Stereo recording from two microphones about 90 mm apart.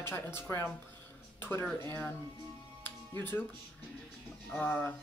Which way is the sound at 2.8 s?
25° left (ahead or behind).